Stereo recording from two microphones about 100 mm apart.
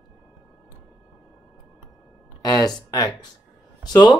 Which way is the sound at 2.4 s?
40° left (ahead or behind).